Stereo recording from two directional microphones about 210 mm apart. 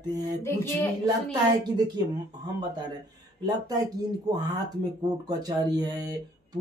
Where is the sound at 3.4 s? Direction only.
20° right (ahead or behind).